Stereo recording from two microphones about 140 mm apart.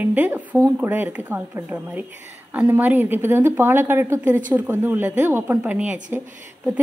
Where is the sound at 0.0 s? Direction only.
10° right (ahead or behind).